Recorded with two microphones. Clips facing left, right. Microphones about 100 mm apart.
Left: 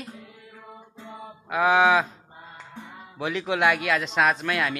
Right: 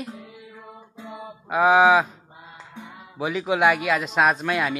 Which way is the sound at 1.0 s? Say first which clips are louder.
Right 3 dB; 15° right (ahead or behind).